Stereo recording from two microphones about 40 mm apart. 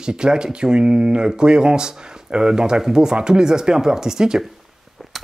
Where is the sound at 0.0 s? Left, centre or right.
Centre.